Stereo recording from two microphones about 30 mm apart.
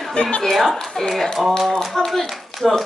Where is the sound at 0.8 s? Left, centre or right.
Centre.